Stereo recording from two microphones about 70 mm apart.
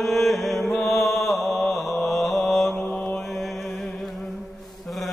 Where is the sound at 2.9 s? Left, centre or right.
Left.